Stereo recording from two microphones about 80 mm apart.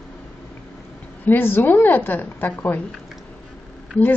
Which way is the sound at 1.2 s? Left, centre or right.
Left.